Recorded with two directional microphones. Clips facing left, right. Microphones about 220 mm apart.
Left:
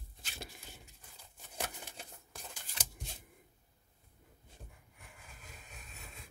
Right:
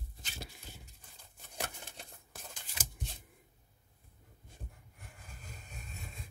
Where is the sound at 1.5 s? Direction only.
Centre (ahead or behind).